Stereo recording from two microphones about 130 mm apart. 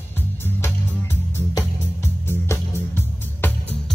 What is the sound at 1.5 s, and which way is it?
Music, 20° left (ahead or behind).